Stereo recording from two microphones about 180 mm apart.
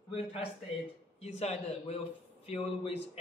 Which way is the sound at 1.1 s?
35° left (ahead or behind).